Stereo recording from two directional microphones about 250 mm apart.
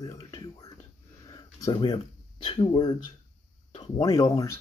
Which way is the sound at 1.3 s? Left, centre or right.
Centre.